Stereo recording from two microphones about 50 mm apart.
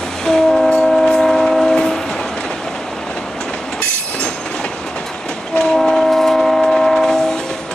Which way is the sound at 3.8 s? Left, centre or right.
Left.